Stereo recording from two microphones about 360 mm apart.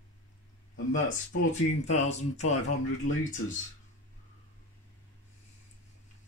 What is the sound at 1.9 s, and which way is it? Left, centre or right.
Speech, centre.